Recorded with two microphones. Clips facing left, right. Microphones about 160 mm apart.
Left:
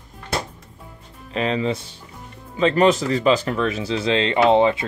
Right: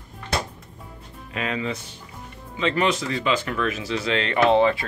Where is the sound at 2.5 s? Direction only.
40° left (ahead or behind).